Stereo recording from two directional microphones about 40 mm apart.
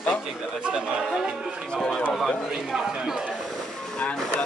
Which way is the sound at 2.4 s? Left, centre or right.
Centre.